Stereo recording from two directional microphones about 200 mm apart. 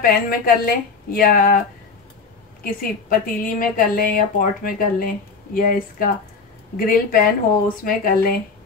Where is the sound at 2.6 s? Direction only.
45° left (ahead or behind).